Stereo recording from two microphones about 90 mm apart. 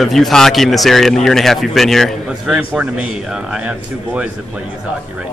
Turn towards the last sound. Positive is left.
turn(degrees=-15)  # may be behind; listen again after turning